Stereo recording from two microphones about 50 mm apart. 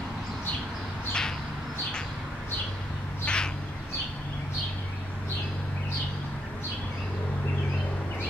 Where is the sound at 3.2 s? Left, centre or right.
Centre.